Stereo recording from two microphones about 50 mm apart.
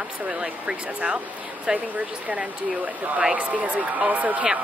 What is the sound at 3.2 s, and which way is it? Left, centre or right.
Speech, right.